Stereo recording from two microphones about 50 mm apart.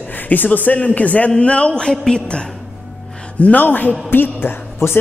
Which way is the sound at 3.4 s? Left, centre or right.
Left.